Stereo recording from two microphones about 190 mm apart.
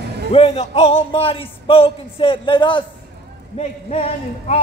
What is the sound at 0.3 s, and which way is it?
A man's voice, 30° left (ahead or behind).